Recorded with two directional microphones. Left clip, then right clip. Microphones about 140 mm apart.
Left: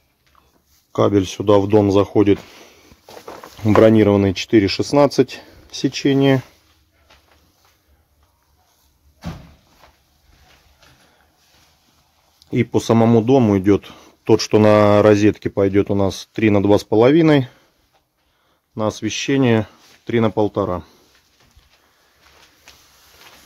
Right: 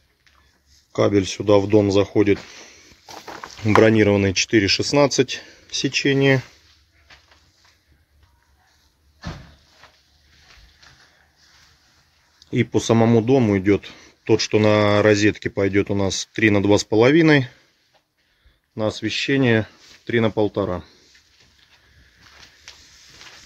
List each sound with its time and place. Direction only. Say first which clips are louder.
0.9 s speech: left 2 dB; 25° left (ahead or behind)
12.4 s speech: left 2 dB; 15° left (ahead or behind)
18.8 s speech: left 1 dB; 20° left (ahead or behind)